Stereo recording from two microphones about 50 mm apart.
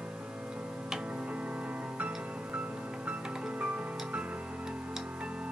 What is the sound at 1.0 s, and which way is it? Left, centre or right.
Music, right.